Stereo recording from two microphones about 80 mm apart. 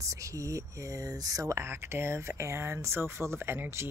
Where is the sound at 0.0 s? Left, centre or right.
Right.